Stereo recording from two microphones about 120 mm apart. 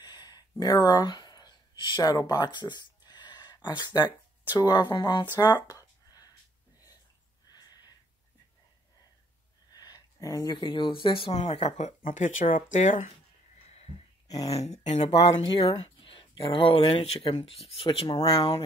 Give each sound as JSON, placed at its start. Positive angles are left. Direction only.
{"t": 0.0, "sound": "a sound", "side_deg": 35}
{"t": 4.6, "sound": "speech", "side_deg": 35}
{"t": 5.7, "sound": "a sound", "side_deg": 30}
{"t": 7.4, "sound": "a sound", "side_deg": 35}
{"t": 9.7, "sound": "speech", "side_deg": 35}
{"t": 11.3, "sound": "speech", "side_deg": 60}
{"t": 14.2, "sound": "speech", "side_deg": 30}
{"t": 14.5, "sound": "speech", "side_deg": 65}
{"t": 15.2, "sound": "speech", "side_deg": 45}